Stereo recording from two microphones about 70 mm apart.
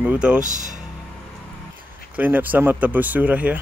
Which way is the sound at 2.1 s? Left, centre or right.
Right.